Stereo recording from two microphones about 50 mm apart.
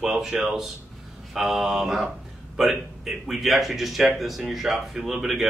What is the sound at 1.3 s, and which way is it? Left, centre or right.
Speech, centre.